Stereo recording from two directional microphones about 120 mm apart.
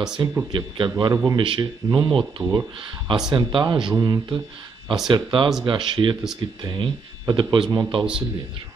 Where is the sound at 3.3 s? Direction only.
40° right (ahead or behind).